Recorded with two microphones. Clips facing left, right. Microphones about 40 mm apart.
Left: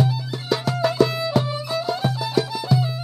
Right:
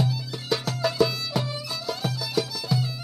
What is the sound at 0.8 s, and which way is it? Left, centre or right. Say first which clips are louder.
Music: left 4 dB; centre.